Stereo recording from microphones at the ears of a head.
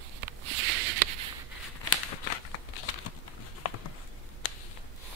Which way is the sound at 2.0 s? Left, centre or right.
Left.